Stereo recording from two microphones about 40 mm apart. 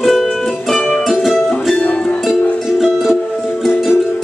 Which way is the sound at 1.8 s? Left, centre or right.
Left.